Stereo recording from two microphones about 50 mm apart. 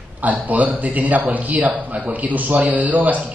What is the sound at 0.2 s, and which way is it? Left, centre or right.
A man's voice, right.